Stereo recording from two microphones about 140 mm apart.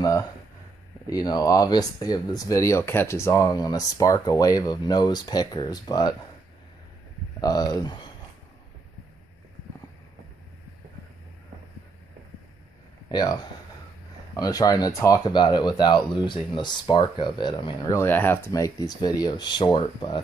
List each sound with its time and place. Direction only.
1.1 s speech: 30° left (ahead or behind)
7.3 s speech: 25° left (ahead or behind)
13.1 s speech: 30° left (ahead or behind)
17.9 s speech: 15° left (ahead or behind); by 20.2 s 35° left (ahead or behind)